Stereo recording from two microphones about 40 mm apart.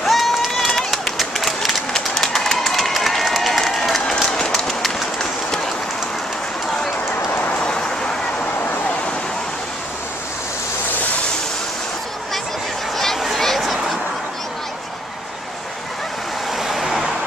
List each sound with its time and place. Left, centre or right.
0.0 s crowd: centre
0.7 s run: centre
4.1 s run: centre
7.5 s vehicle: centre
12.9 s a sound: centre
16.5 s vehicle: centre